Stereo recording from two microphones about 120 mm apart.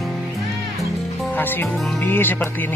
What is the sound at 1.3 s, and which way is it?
Speech, 15° left (ahead or behind).